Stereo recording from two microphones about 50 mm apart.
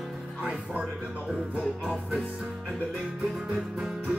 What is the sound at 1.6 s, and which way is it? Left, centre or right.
Music, centre.